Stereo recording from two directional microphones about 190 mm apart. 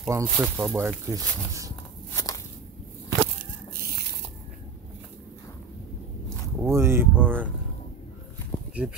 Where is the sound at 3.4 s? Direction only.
50° right (ahead or behind).